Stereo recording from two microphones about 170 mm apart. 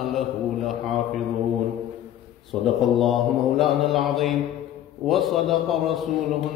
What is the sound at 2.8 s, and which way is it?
Mantra, centre (ahead or behind).